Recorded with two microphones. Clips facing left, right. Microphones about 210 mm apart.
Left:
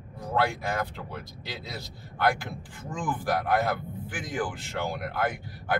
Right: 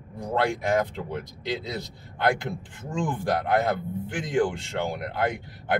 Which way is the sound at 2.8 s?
25° right (ahead or behind).